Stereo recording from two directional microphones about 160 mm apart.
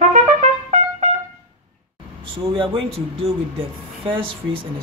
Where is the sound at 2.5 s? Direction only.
35° right (ahead or behind).